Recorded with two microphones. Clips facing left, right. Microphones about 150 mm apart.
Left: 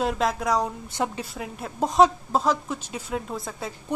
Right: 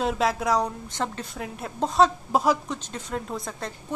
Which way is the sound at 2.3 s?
15° right (ahead or behind).